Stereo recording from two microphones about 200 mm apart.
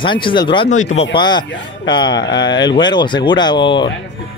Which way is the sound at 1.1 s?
20° left (ahead or behind).